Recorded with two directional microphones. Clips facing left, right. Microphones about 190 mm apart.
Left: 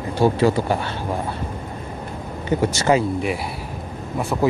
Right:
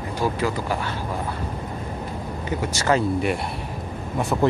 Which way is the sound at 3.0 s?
Centre (ahead or behind).